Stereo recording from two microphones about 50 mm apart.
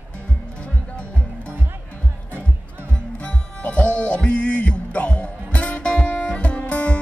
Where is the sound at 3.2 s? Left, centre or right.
Left.